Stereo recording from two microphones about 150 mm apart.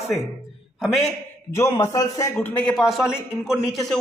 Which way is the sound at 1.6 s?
20° left (ahead or behind).